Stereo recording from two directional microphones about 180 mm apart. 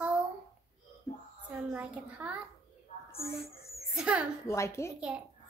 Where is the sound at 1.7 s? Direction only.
10° right (ahead or behind).